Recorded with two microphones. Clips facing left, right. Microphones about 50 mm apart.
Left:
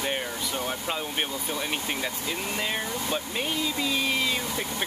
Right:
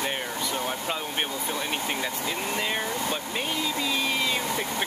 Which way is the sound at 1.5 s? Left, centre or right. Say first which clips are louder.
Right 1 dB; centre.